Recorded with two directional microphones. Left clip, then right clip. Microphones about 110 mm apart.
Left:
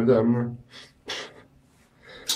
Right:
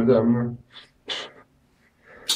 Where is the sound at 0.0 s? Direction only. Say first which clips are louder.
Right 1 dB; 40° left (ahead or behind).